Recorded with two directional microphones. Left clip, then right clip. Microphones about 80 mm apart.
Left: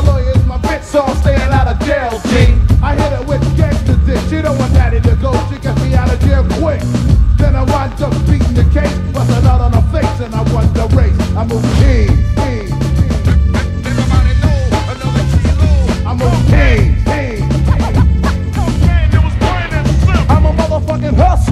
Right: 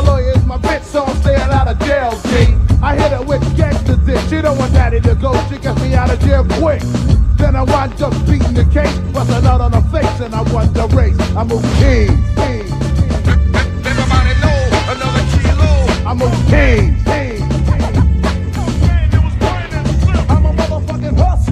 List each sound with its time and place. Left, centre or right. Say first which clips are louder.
0.0 s music: right 2 dB; left